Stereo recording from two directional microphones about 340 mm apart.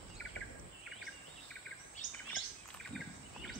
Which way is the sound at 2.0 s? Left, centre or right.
Left.